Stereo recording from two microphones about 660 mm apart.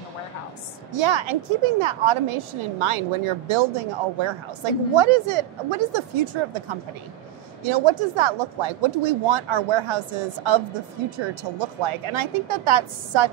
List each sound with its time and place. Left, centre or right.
0.9 s speech: right
7.6 s speech: right